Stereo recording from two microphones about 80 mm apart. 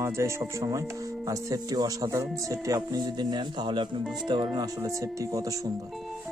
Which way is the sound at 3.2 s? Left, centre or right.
Right.